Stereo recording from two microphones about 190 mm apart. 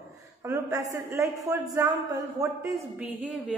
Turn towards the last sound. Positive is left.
turn(degrees=-10)  # may be behind; listen again after turning